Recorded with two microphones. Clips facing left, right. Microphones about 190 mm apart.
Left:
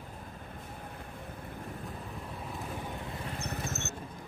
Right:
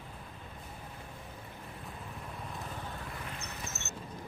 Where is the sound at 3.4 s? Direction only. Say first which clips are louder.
Left 7 dB; 55° left (ahead or behind).